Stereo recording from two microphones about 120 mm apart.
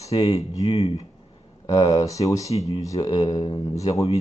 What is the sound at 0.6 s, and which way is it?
Speech, 55° left (ahead or behind).